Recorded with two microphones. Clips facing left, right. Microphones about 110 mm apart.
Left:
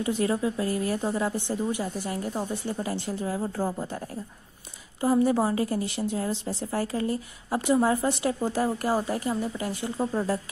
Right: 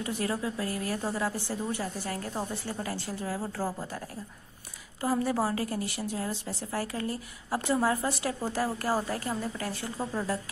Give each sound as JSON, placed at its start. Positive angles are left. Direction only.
{"t": 0.0, "sound": "a woman's voice", "side_deg": 25}
{"t": 5.0, "sound": "a woman's voice", "side_deg": 20}